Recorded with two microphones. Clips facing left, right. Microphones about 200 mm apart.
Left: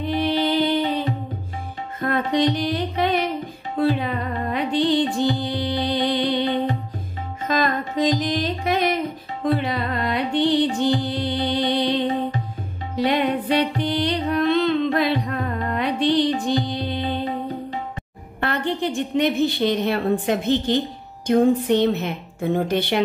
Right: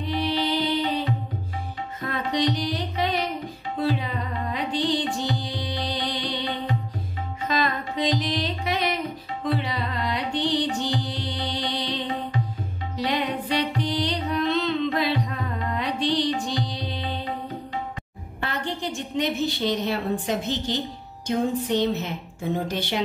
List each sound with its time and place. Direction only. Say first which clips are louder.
0.0 s music: left 4 dB; 55° left (ahead or behind)
18.4 s a woman's voice: left 6 dB; 60° left (ahead or behind)